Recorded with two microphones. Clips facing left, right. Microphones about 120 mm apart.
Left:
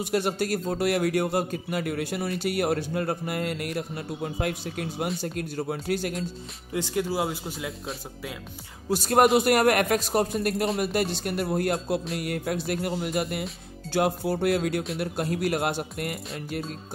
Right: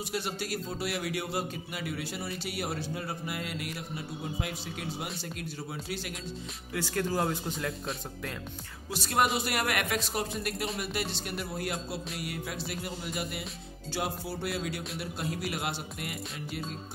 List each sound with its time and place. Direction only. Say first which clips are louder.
0.0 s speech: left 9 dB; 55° left (ahead or behind)
6.7 s speech: left 4 dB; 20° left (ahead or behind)
8.9 s speech: left 9 dB; 45° left (ahead or behind); by 13.3 s 60° left (ahead or behind)
13.8 s music: left 10 dB; 55° left (ahead or behind)
15.0 s speech: left 7 dB; 55° left (ahead or behind)